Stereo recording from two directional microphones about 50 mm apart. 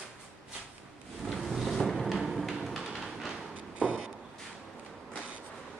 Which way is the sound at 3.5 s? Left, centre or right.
Right.